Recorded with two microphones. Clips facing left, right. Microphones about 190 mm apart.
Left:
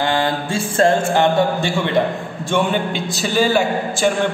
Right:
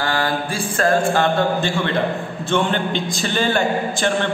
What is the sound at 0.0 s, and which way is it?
A man's voice, 20° left (ahead or behind).